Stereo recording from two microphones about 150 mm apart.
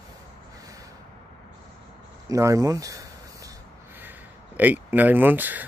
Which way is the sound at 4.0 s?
10° right (ahead or behind).